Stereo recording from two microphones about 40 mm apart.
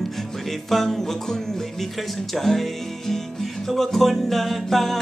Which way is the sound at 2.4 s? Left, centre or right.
Centre.